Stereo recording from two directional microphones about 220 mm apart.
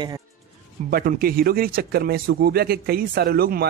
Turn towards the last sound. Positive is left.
turn(degrees=-45)  # may be behind; listen again after turning